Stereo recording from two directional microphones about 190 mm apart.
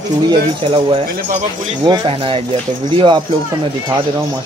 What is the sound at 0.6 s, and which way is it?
Speech, 25° right (ahead or behind).